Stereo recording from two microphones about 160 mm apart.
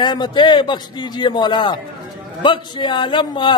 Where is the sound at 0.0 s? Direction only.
30° left (ahead or behind).